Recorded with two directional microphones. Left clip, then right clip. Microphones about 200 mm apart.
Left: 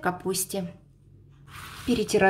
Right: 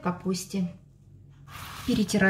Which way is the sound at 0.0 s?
50° left (ahead or behind).